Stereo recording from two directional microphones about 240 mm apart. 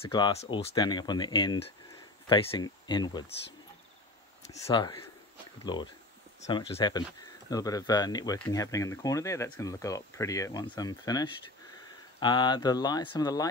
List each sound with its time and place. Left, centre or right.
0.0 s speech: left
4.5 s speech: centre